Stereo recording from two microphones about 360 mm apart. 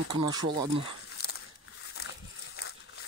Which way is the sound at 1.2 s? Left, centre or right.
Left.